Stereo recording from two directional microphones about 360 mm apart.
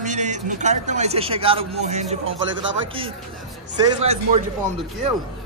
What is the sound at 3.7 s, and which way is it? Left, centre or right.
Speech, centre.